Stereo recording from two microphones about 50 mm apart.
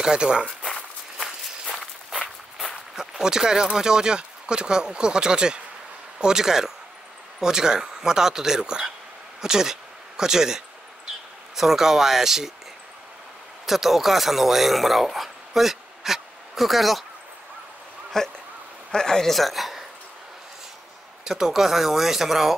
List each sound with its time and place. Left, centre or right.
0.0 s speech: centre
1.1 s walk: centre
2.6 s speech: centre
13.7 s speech: centre
18.1 s a woman's voice: centre
21.2 s speech: centre